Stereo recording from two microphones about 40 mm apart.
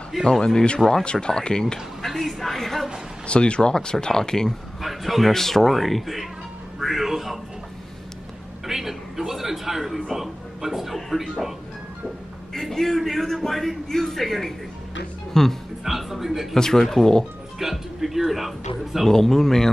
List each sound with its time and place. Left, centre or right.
0.1 s speech: centre
1.0 s speech: left
2.0 s a woman's voice: centre
3.3 s speech: left
4.8 s a man's voice: centre
8.6 s a sound: centre
10.1 s speech: centre
12.5 s a man's voice: centre
15.8 s a man's voice: centre
16.5 s speech: centre
17.6 s a man's voice: centre
19.0 s speech: centre